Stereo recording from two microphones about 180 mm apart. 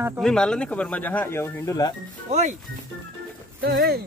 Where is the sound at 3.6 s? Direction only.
55° right (ahead or behind).